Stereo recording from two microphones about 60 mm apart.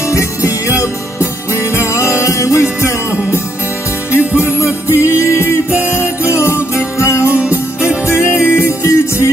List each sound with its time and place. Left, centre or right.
0.0 s music: left
4.1 s music: right
5.0 s music: left
5.7 s music: right
5.9 s music: left
8.4 s music: right
8.8 s music: left